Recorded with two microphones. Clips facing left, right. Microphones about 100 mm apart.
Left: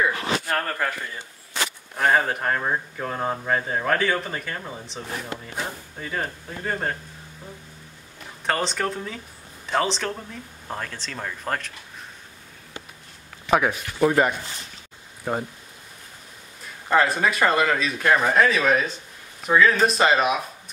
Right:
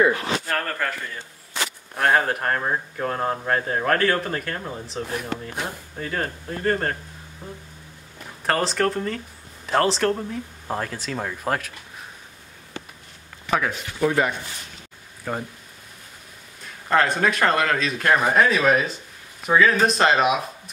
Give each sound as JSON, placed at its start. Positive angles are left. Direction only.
{"t": 0.5, "sound": "speech", "side_deg": 10}
{"t": 8.5, "sound": "speech", "side_deg": 0}
{"t": 13.5, "sound": "speech", "side_deg": 15}
{"t": 16.9, "sound": "speech", "side_deg": 5}